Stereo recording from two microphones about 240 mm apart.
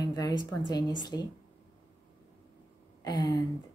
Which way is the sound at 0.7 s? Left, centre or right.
Centre.